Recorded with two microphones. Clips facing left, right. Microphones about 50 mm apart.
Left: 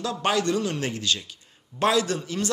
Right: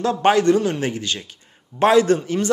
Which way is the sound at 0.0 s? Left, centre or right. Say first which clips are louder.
Right 8 dB; right.